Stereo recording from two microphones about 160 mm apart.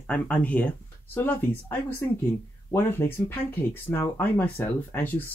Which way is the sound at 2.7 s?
15° left (ahead or behind).